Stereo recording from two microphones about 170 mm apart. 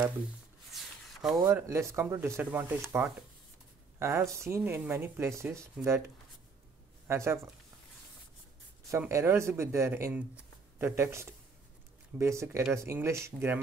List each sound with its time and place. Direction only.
0.7 s a sound: centre (ahead or behind)
1.5 s speech: 15° right (ahead or behind)
8.9 s speech: 15° right (ahead or behind)